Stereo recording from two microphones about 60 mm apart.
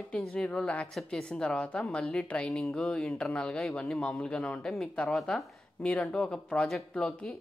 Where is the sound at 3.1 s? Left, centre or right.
Centre.